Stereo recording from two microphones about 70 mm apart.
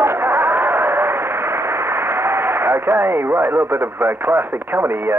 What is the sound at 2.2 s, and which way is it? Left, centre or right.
A man's voice, right.